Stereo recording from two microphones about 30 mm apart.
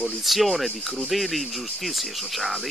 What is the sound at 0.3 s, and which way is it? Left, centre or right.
Speech, centre.